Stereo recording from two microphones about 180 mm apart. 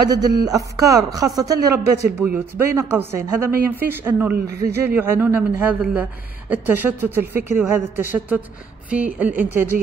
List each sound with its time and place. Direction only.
0.1 s speech: 20° right (ahead or behind)